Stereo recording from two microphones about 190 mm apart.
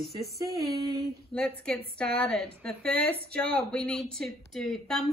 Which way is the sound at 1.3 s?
5° left (ahead or behind).